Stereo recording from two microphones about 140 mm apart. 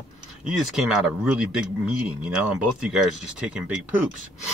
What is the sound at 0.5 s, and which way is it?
Speech, 5° right (ahead or behind).